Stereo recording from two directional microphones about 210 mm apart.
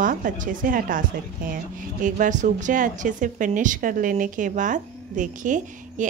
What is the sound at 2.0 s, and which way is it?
A woman's voice, 35° right (ahead or behind).